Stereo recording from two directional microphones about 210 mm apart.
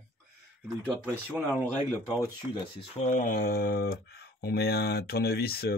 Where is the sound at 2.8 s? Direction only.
35° left (ahead or behind).